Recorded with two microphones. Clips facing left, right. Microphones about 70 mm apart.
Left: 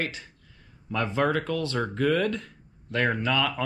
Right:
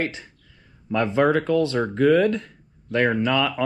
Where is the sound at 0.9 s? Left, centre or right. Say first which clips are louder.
Right 6 dB; right.